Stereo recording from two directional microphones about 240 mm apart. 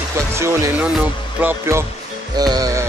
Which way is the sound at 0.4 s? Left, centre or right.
Centre.